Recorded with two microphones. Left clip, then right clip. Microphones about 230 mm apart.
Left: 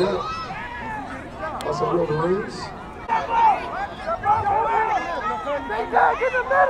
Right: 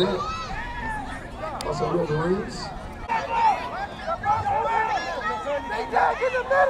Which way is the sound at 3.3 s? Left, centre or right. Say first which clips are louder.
Left 4 dB; right.